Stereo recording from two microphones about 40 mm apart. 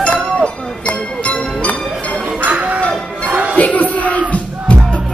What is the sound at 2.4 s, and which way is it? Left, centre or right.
Music, right.